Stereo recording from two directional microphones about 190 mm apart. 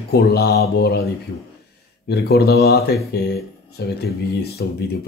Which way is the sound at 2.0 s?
55° left (ahead or behind).